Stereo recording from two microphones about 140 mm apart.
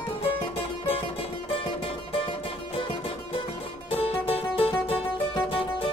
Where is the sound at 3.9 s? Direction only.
45° left (ahead or behind).